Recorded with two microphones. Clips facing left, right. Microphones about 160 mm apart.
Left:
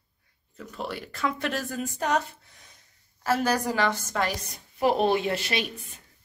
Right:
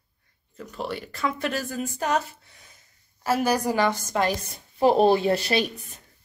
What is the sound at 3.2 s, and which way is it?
A woman's voice, 10° right (ahead or behind).